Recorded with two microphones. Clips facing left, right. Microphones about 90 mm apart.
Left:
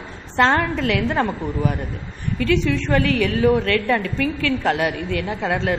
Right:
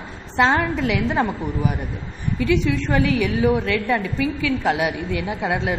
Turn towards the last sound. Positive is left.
turn(degrees=-15)  # may be behind; listen again after turning